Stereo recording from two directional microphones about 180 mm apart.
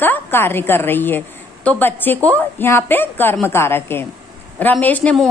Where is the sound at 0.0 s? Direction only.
10° left (ahead or behind).